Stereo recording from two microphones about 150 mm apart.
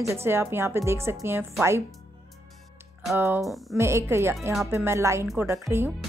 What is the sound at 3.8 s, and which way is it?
A woman's voice, 15° right (ahead or behind).